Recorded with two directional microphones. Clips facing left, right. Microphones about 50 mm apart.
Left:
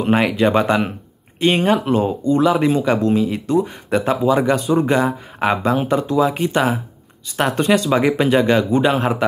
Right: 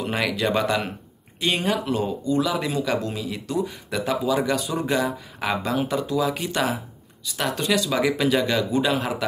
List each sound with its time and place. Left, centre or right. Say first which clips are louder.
0.0 s speech: left 8 dB; left